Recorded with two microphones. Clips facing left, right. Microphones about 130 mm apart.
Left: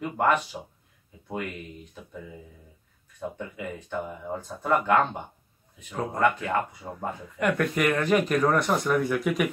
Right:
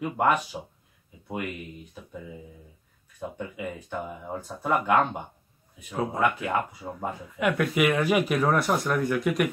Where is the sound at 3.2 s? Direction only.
15° right (ahead or behind).